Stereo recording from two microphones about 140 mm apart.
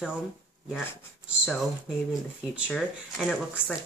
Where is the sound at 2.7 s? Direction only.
5° left (ahead or behind).